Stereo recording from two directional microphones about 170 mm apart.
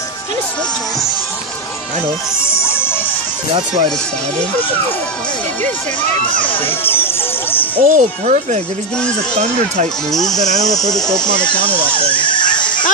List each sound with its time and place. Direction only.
2.5 s music: 15° left (ahead or behind)
6.8 s horse: 15° left (ahead or behind)
7.8 s speech: 45° right (ahead or behind)
10.1 s speech: centre (ahead or behind)
10.6 s speech: 20° left (ahead or behind)
11.0 s speech: 5° left (ahead or behind)
11.2 s speech: 25° left (ahead or behind)
12.1 s neigh: 30° left (ahead or behind)